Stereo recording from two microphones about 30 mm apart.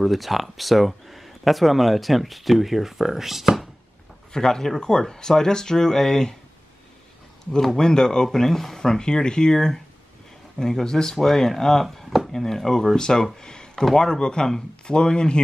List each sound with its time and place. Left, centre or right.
0.0 s speech: centre
4.3 s speech: centre
7.7 s speech: left
8.7 s speech: left; by 12.3 s centre
12.4 s speech: centre; by 15.4 s left